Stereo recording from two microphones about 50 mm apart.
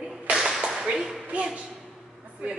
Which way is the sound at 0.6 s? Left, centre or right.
Centre.